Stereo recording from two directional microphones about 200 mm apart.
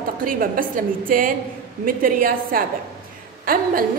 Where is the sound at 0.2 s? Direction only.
45° right (ahead or behind).